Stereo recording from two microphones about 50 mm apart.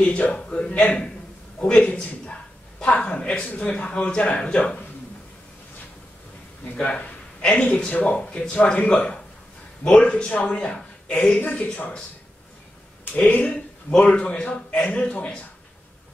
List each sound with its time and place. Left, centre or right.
0.0 s a man's voice: left
6.6 s a man's voice: left
13.1 s a man's voice: left